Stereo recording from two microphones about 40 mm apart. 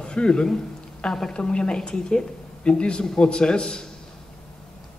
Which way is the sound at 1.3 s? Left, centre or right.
Left.